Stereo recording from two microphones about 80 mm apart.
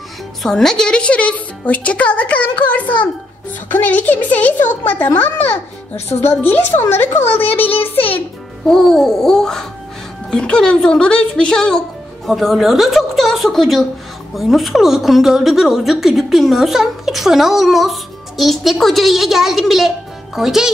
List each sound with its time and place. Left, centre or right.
0.4 s a woman's voice: centre; by 8.0 s left
8.6 s a woman's voice: centre